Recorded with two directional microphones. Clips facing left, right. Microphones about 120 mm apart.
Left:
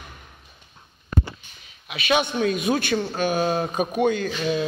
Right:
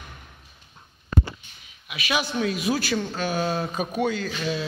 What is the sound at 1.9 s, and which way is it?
Speech, 30° left (ahead or behind).